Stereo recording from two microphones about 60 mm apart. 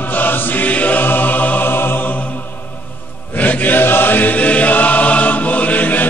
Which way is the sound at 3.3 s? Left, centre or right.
Left.